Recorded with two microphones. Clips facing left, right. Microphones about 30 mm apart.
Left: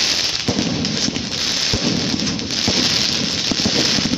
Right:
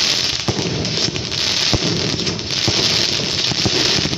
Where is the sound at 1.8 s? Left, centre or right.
Right.